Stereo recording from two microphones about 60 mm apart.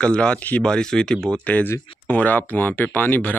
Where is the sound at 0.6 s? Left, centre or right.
Centre.